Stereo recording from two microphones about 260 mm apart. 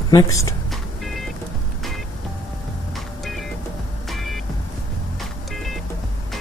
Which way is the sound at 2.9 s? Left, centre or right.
Centre.